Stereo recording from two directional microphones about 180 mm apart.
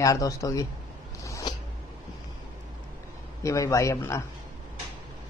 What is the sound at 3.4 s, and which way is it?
Speech, 15° left (ahead or behind).